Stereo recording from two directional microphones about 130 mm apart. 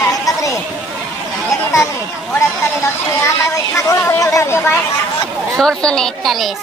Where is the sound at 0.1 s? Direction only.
25° left (ahead or behind).